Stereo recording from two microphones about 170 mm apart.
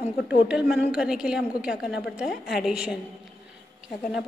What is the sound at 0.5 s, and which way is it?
A woman's voice, 5° right (ahead or behind).